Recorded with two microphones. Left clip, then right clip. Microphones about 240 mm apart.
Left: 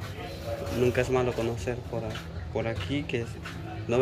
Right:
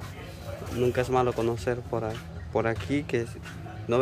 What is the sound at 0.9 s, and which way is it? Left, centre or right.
Speech, centre.